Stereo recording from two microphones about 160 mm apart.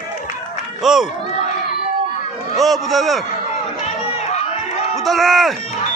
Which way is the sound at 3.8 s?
40° left (ahead or behind).